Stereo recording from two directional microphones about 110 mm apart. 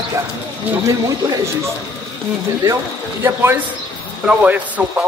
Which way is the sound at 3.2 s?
20° right (ahead or behind).